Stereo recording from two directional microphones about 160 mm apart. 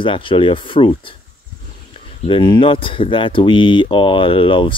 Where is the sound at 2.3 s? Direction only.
30° left (ahead or behind).